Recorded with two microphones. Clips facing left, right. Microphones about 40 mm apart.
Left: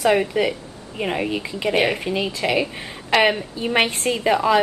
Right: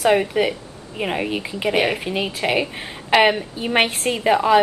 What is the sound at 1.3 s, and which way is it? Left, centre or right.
Speech, centre.